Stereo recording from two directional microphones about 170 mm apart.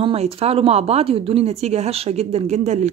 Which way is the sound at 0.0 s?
35° right (ahead or behind).